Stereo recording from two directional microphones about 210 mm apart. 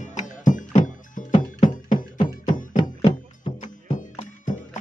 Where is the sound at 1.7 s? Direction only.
40° left (ahead or behind).